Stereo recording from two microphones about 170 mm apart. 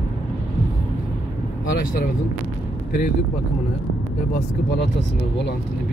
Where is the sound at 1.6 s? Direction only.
55° left (ahead or behind).